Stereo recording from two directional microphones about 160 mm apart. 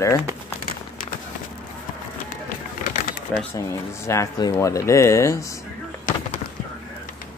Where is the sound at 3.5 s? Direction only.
15° left (ahead or behind).